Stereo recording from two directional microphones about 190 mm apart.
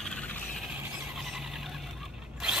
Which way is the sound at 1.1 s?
Centre (ahead or behind).